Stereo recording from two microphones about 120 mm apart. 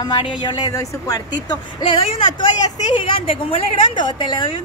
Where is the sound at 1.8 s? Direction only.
50° left (ahead or behind).